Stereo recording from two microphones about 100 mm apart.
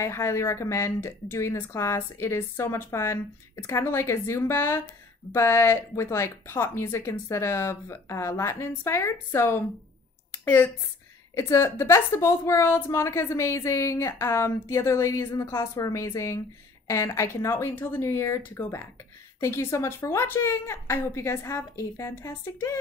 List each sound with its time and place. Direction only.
0.0 s a woman's voice: 25° left (ahead or behind)
19.4 s a woman's voice: 30° left (ahead or behind)